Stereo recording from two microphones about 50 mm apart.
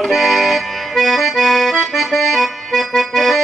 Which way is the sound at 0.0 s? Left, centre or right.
Centre.